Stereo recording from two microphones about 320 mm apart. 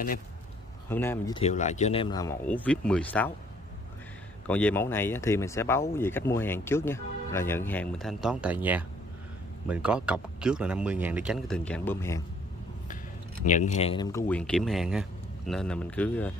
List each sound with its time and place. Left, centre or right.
0.8 s speech: centre
4.5 s speech: centre
13.5 s speech: left; by 16.3 s centre